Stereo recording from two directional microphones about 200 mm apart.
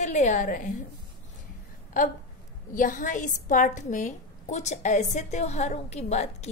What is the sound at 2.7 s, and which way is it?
A woman's voice, 40° left (ahead or behind).